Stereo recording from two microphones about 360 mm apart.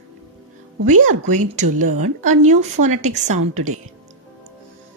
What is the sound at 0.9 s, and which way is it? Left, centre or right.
A woman's voice, right.